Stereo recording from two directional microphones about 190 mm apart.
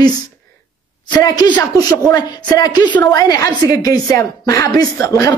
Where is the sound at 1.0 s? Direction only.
20° left (ahead or behind).